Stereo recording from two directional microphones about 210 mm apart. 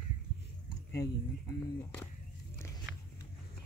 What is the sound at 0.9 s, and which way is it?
Speech, 10° left (ahead or behind).